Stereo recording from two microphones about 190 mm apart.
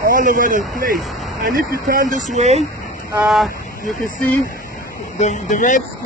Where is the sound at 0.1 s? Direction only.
45° right (ahead or behind).